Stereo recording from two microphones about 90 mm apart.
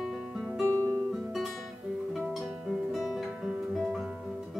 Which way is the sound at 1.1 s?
Centre (ahead or behind).